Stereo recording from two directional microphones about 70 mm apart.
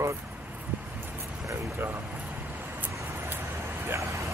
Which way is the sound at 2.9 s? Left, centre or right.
Right.